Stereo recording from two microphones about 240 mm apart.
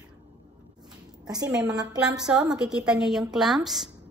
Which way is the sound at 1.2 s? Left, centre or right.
Centre.